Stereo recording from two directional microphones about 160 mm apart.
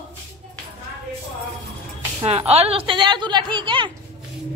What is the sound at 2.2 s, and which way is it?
Speech, 40° right (ahead or behind).